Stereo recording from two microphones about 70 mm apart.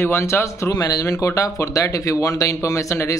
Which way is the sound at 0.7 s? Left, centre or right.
Left.